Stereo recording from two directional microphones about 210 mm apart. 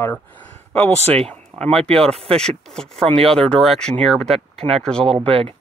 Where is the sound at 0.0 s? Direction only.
10° left (ahead or behind).